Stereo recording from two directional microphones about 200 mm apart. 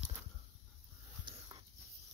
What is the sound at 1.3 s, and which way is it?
Dog, 20° right (ahead or behind).